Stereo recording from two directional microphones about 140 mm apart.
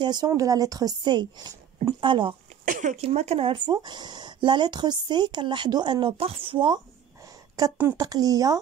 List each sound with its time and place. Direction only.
0.0 s a woman's voice: 30° right (ahead or behind)
2.6 s speech: 65° right (ahead or behind)
3.1 s a woman's voice: 45° right (ahead or behind); by 8.5 s 25° right (ahead or behind)